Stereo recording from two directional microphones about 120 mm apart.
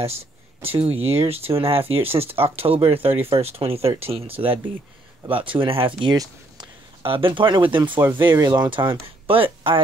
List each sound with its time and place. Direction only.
0.0 s speech: 55° right (ahead or behind)